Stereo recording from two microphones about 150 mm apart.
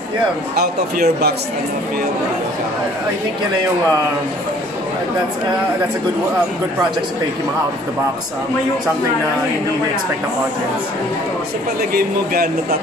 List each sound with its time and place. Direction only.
0.6 s speech: 90° right